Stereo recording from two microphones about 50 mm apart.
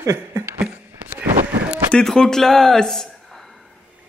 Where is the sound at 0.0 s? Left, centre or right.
Right.